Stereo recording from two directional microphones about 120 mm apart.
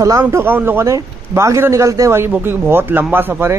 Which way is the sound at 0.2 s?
20° right (ahead or behind).